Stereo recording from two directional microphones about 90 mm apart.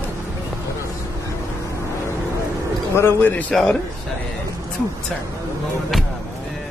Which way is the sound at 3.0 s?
25° left (ahead or behind).